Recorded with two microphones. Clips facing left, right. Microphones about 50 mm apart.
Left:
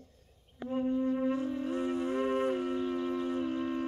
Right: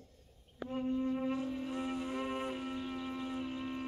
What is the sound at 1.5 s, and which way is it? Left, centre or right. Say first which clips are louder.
Music: left 5 dB; left.